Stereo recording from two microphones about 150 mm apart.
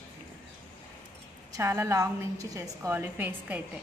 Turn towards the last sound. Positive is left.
turn(degrees=-10)  # may be behind; listen again after turning